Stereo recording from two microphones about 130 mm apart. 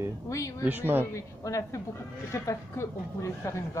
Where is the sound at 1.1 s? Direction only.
25° left (ahead or behind).